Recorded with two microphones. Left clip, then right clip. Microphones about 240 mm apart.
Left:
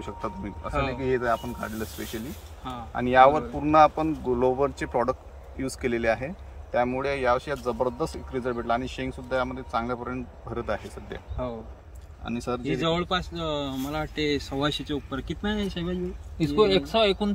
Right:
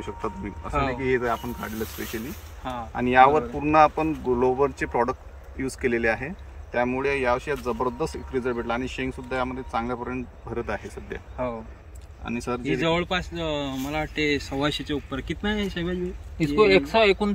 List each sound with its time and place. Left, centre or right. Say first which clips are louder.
0.0 s speech: right 2 dB; centre
12.3 s speech: right 2 dB; centre